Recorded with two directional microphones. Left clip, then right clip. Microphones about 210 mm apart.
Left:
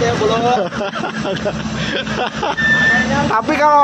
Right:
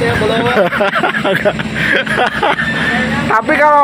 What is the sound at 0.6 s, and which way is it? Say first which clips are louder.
Speech: right 8 dB; 15° right (ahead or behind).